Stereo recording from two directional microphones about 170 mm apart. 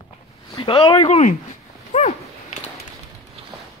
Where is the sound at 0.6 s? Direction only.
30° left (ahead or behind).